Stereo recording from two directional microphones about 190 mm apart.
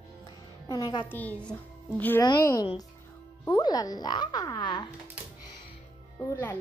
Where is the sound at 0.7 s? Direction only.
20° left (ahead or behind).